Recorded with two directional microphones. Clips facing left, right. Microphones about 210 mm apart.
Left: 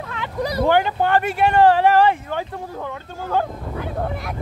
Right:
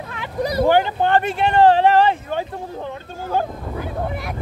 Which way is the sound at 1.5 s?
20° right (ahead or behind).